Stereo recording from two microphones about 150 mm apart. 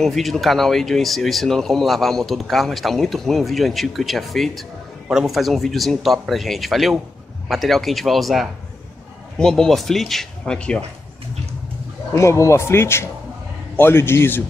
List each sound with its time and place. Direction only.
0.0 s speech: centre (ahead or behind)
12.1 s a man's voice: 20° left (ahead or behind)